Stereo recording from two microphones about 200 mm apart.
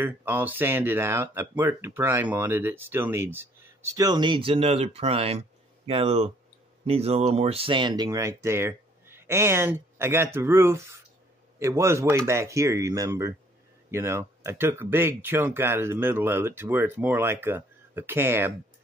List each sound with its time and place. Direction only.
0.0 s speech: 10° right (ahead or behind)